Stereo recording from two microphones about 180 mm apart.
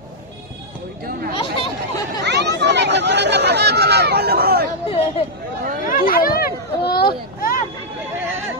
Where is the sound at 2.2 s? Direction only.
70° right (ahead or behind).